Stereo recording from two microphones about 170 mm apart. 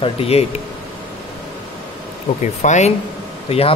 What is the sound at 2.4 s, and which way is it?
Speech, 45° left (ahead or behind).